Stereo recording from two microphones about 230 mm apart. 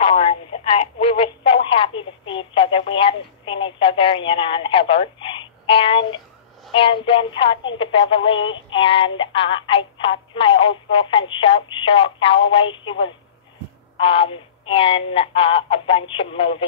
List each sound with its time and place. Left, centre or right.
0.0 s speech: left